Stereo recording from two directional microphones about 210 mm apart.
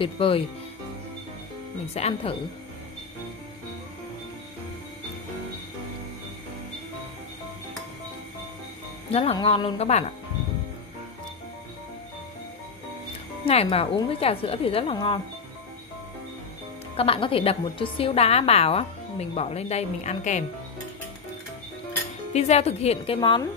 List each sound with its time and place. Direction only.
0.0 s a woman's voice: 25° left (ahead or behind)
2.0 s speech: 30° left (ahead or behind)
9.1 s a woman's voice: 25° left (ahead or behind)
13.5 s a woman's voice: 30° left (ahead or behind)
16.9 s a woman's voice: 25° left (ahead or behind)
22.3 s a woman's voice: 30° left (ahead or behind)